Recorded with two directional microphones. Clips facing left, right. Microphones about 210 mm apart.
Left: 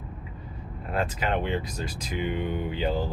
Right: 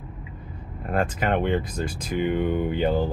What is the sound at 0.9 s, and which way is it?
Speech, 50° right (ahead or behind).